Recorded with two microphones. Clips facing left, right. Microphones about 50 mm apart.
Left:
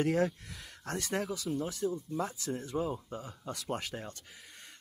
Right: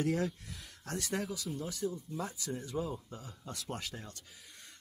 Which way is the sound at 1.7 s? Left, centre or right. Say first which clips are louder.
Left 3 dB; left.